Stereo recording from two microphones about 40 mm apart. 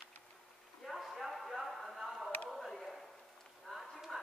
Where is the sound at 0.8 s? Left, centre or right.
Centre.